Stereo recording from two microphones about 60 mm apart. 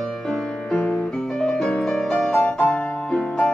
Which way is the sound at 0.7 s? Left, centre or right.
Left.